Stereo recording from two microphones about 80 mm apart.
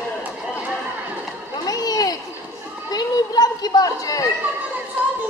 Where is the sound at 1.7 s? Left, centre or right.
Left.